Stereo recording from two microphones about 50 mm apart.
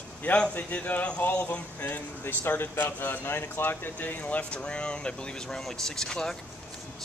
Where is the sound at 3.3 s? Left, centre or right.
Left.